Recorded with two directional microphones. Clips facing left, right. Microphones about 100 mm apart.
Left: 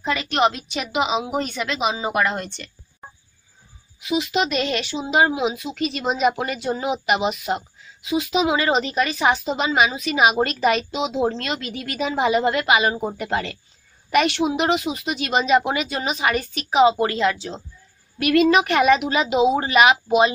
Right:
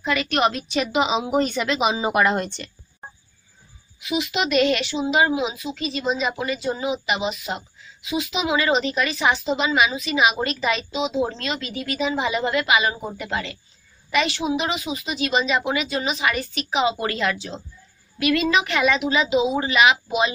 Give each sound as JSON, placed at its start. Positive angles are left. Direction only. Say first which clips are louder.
{"t": 0.0, "sound": "a woman's voice", "louder": "left 1 dB", "side_deg": 30}
{"t": 4.0, "sound": "a woman's voice", "louder": "left 2 dB", "side_deg": 35}
{"t": 14.1, "sound": "a woman's voice", "louder": "left 3 dB", "side_deg": 60}
{"t": 17.0, "sound": "a woman's voice", "louder": "left 4 dB", "side_deg": 25}
{"t": 18.2, "sound": "a woman's voice", "louder": "left 4 dB", "side_deg": 50}